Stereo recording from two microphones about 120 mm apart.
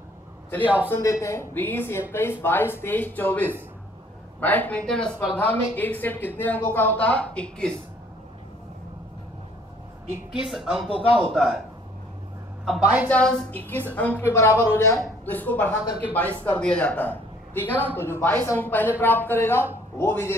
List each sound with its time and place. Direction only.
0.8 s a woman's voice: 20° left (ahead or behind)
10.3 s speech: 5° right (ahead or behind)
13.1 s a woman's voice: 10° left (ahead or behind)